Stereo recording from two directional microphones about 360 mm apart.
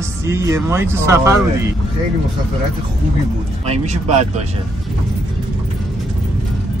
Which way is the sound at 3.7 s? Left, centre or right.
Centre.